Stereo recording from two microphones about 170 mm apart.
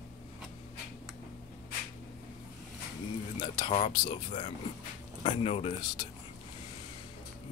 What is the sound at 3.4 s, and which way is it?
Speech, 30° left (ahead or behind).